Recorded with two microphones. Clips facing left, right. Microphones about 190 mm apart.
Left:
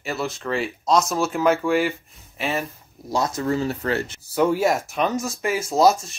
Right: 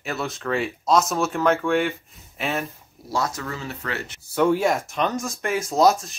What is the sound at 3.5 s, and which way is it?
Speech, 35° left (ahead or behind).